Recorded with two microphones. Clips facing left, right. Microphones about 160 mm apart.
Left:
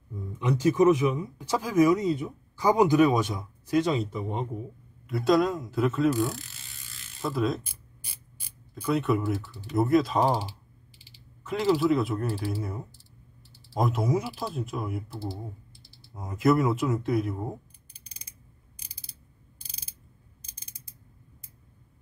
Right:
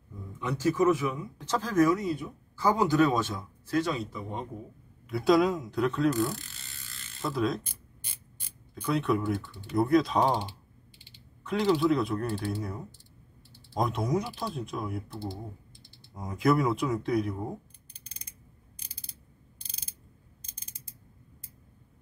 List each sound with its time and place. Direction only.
0.4 s speech: 15° left (ahead or behind)
5.0 s speech: centre (ahead or behind)
8.7 s speech: centre (ahead or behind)